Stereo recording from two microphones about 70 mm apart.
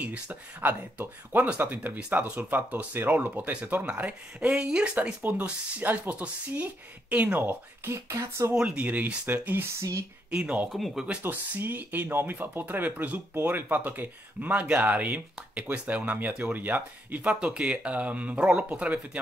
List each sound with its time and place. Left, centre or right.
0.0 s speech: right
4.5 s speech: centre; by 7.9 s right
7.9 s speech: right
8.5 s speech: centre
8.8 s speech: right
9.8 s speech: right
10.3 s speech: centre
10.7 s speech: centre
11.2 s speech: right